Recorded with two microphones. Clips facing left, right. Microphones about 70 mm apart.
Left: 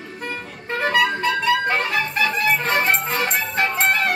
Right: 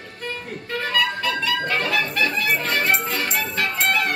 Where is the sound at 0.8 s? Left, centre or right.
Left.